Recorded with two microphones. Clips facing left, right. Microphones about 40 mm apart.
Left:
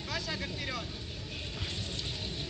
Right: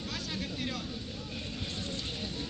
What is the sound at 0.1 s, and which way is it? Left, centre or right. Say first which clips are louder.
Vehicle: left 4 dB; left.